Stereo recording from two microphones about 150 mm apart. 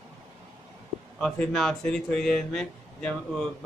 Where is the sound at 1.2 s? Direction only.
5° left (ahead or behind).